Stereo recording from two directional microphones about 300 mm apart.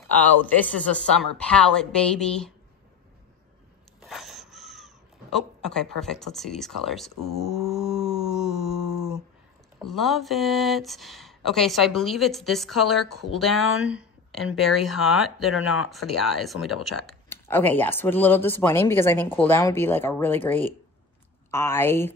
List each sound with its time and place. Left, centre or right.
0.2 s speech: centre
4.0 s a sound: centre
9.8 s speech: centre
15.5 s speech: left
15.9 s speech: centre